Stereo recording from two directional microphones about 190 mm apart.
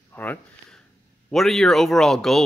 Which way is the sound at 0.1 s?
10° left (ahead or behind).